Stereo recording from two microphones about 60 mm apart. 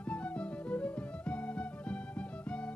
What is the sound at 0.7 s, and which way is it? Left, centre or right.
Music, centre.